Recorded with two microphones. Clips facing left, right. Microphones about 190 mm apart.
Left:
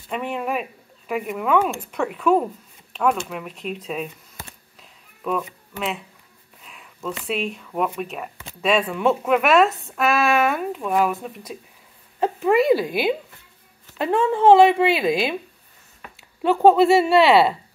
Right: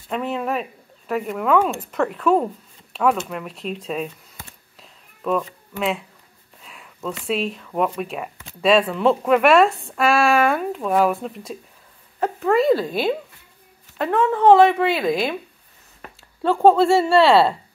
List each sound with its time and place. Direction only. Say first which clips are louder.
0.1 s speech: right 2 dB; 5° left (ahead or behind)
5.2 s speech: right 3 dB; 5° left (ahead or behind)
6.6 s a sound: right 2 dB; 5° left (ahead or behind)
7.2 s speech: right 3 dB; 5° left (ahead or behind)
12.2 s speech: even; 20° left (ahead or behind)
12.7 s speech: even; 5° left (ahead or behind)
13.9 s speech: even; 20° left (ahead or behind)
16.7 s speech: even; 15° left (ahead or behind)